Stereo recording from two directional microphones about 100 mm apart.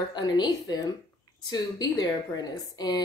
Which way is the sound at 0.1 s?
45° left (ahead or behind).